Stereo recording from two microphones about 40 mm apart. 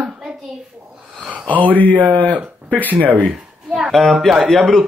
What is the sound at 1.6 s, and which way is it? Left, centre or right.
Speech, left.